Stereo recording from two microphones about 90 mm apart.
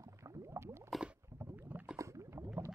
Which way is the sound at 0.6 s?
30° right (ahead or behind).